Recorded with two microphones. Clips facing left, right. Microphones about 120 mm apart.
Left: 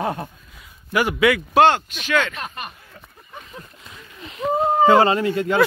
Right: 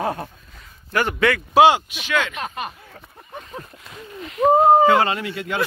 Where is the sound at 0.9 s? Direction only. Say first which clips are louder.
Left 2 dB; 10° left (ahead or behind).